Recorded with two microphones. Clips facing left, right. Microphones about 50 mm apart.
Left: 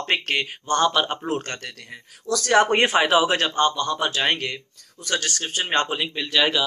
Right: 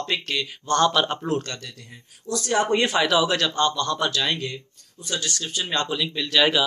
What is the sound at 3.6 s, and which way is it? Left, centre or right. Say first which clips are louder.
Speech: left 1 dB; centre.